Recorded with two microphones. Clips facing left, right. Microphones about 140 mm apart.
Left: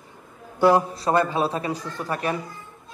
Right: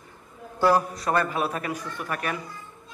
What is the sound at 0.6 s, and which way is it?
A man's voice, 20° left (ahead or behind).